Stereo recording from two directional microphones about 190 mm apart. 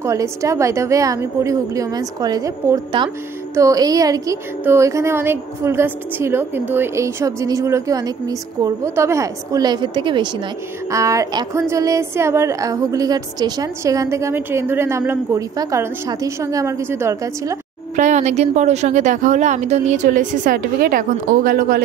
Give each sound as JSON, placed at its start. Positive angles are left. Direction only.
{"t": 0.0, "sound": "a woman's voice", "side_deg": -15}
{"t": 17.9, "sound": "speech", "side_deg": -40}